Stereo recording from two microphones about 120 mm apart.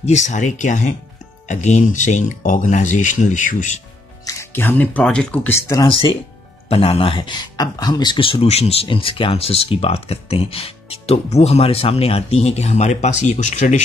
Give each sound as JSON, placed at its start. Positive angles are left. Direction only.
{"t": 0.0, "sound": "speech", "side_deg": 80}
{"t": 1.5, "sound": "speech", "side_deg": 80}
{"t": 4.2, "sound": "speech", "side_deg": 25}
{"t": 5.9, "sound": "speech", "side_deg": 45}
{"t": 8.8, "sound": "speech", "side_deg": 45}